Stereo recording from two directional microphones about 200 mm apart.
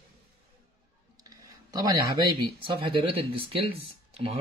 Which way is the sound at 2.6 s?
25° right (ahead or behind).